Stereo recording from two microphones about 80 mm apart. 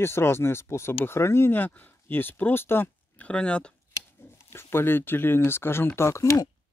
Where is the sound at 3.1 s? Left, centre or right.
Centre.